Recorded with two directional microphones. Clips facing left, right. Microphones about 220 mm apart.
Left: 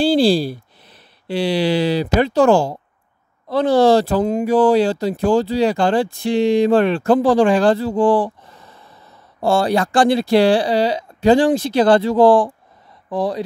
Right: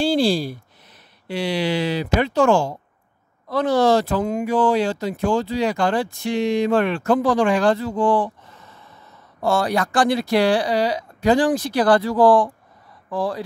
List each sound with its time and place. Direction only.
0.0 s speech: 35° left (ahead or behind)